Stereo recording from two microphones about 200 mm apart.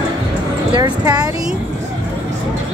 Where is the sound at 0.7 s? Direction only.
20° right (ahead or behind).